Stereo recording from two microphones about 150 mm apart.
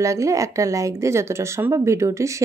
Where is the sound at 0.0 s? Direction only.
20° right (ahead or behind).